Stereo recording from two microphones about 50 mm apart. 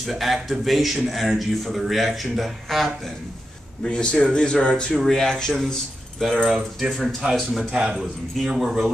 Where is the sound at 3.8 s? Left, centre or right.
Centre.